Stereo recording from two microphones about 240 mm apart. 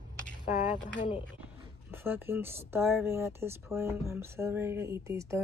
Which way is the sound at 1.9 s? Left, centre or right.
Centre.